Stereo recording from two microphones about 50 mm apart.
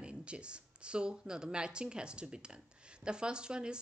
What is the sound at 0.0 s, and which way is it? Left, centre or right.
Speech, right.